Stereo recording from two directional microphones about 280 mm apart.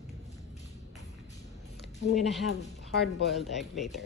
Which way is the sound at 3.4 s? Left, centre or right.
Centre.